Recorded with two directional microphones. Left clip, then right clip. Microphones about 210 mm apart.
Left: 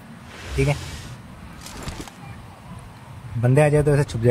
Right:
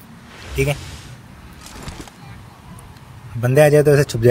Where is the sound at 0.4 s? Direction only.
Centre (ahead or behind).